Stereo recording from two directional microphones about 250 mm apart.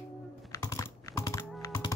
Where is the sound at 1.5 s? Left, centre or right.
Centre.